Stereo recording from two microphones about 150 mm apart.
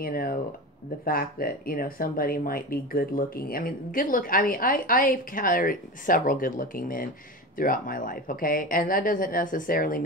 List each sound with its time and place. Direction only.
0.0 s speech: 75° left (ahead or behind)